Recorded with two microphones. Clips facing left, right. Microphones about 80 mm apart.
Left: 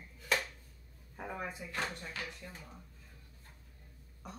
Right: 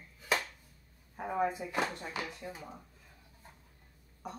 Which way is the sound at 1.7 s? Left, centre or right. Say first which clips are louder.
Right 5 dB; right.